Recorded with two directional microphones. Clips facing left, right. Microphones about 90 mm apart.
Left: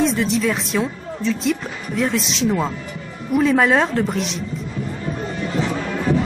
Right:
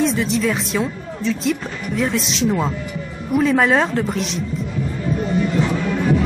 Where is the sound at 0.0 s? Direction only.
Centre (ahead or behind).